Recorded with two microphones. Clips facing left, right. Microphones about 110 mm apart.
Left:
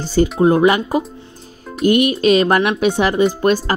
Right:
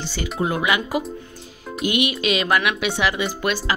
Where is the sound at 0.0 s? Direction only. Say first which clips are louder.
Left 11 dB; 40° left (ahead or behind).